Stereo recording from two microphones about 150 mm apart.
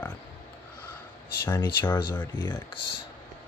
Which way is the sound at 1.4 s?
15° left (ahead or behind).